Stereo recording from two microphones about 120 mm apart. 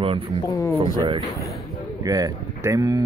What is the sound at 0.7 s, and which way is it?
Speech, 45° right (ahead or behind).